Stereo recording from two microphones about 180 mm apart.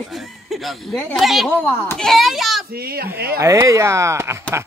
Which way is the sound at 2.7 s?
60° right (ahead or behind).